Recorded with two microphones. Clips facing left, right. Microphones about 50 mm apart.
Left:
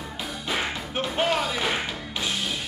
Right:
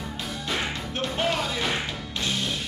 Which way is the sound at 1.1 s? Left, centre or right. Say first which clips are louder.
Left 2 dB; centre.